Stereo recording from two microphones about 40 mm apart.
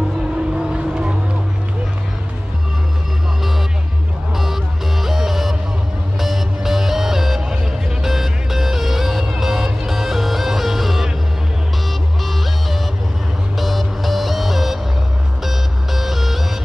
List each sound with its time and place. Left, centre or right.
0.6 s vehicle: right
4.4 s music: centre
13.6 s music: centre